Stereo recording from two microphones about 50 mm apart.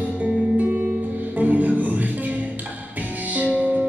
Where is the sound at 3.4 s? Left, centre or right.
Right.